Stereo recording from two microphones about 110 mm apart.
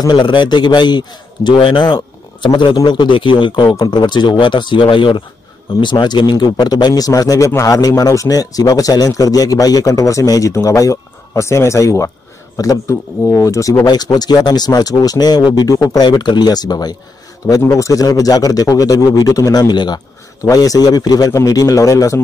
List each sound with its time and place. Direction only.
0.0 s a man's voice: 45° left (ahead or behind)
3.6 s a man's voice: 40° left (ahead or behind)